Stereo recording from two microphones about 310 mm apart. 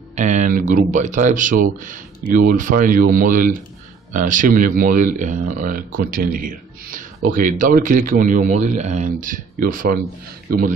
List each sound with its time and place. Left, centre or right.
0.1 s speech: right